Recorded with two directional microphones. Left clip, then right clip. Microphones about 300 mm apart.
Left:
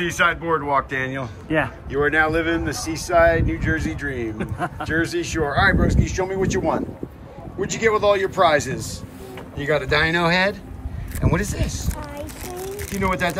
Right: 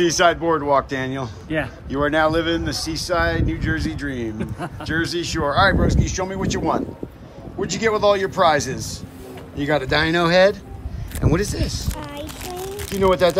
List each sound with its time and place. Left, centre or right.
0.0 s speech: centre
12.9 s speech: centre